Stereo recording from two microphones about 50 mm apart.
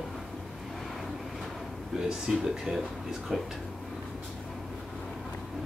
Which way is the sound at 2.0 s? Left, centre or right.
Centre.